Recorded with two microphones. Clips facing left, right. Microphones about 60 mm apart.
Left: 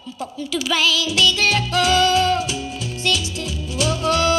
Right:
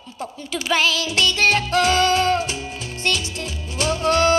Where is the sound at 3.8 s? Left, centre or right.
Right.